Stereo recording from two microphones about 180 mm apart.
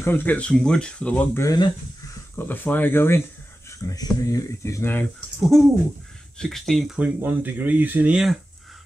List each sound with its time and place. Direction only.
0.0 s speech: 10° left (ahead or behind)
5.5 s speech: centre (ahead or behind)
7.2 s speech: 10° right (ahead or behind)